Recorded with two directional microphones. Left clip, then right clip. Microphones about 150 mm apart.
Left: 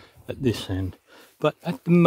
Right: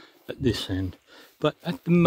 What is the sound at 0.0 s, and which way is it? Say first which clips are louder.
Speech: left 1 dB; 20° left (ahead or behind).